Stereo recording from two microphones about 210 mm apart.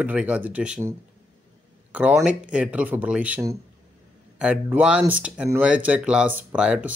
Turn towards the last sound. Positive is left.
turn(degrees=-5)  # may be behind; listen again after turning